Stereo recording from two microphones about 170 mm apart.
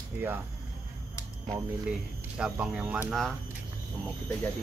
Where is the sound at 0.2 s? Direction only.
10° right (ahead or behind).